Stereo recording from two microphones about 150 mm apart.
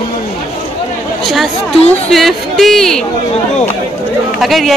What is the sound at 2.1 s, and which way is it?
Speech, centre (ahead or behind).